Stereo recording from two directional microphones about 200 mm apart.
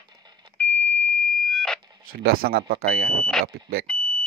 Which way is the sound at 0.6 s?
10° left (ahead or behind).